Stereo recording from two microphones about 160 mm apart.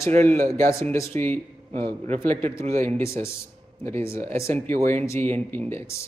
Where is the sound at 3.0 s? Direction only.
15° left (ahead or behind).